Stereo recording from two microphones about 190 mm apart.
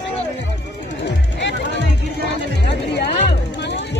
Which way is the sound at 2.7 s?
60° left (ahead or behind).